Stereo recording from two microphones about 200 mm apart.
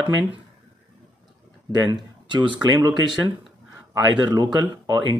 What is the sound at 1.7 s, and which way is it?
Speech, 20° right (ahead or behind).